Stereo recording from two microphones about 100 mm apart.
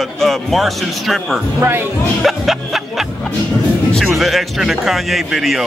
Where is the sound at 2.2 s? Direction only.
Centre (ahead or behind).